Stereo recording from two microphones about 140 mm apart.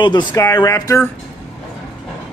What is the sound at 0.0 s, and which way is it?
Speech, 30° left (ahead or behind).